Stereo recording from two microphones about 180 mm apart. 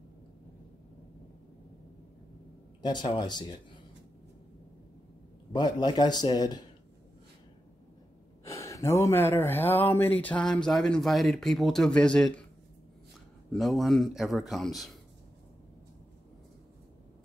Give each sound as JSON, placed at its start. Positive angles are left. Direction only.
{"t": 2.8, "sound": "a man's voice", "side_deg": 25}
{"t": 5.5, "sound": "a man's voice", "side_deg": 25}
{"t": 8.5, "sound": "speech", "side_deg": 15}
{"t": 13.5, "sound": "a man's voice", "side_deg": 0}